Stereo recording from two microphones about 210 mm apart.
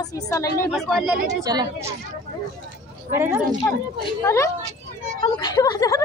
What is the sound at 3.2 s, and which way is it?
Speech, 15° right (ahead or behind).